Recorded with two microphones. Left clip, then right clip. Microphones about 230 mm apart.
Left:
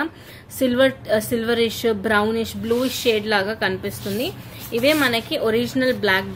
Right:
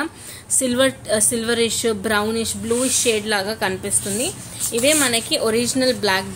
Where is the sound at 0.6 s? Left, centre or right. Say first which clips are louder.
Left 1 dB; centre.